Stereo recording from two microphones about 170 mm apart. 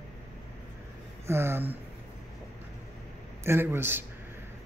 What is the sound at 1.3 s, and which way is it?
Speech, 15° right (ahead or behind).